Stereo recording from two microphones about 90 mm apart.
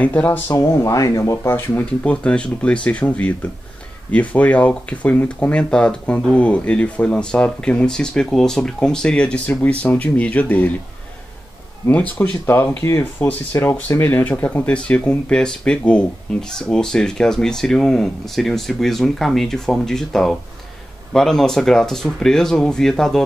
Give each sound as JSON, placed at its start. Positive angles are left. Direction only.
{"t": 0.0, "sound": "speech", "side_deg": 15}
{"t": 0.5, "sound": "speech", "side_deg": 35}
{"t": 2.0, "sound": "speech", "side_deg": 15}
{"t": 11.8, "sound": "speech", "side_deg": 20}
{"t": 14.4, "sound": "speech", "side_deg": 15}